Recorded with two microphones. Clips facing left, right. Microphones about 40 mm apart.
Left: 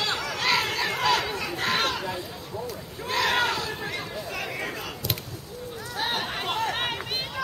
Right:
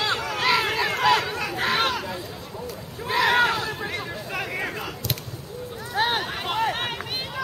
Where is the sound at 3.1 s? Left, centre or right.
Centre.